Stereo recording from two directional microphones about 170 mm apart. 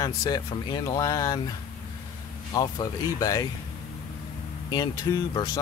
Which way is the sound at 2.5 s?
20° left (ahead or behind).